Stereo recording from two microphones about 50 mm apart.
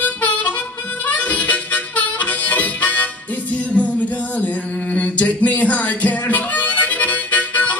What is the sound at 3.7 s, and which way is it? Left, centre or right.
Music, left.